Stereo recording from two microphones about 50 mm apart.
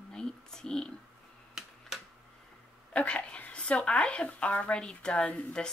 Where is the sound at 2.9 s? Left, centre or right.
Left.